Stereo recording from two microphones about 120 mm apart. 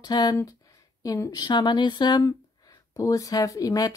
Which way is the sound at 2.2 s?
30° left (ahead or behind).